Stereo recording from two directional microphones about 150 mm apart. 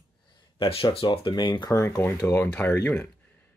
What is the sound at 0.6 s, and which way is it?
Speech, 40° left (ahead or behind).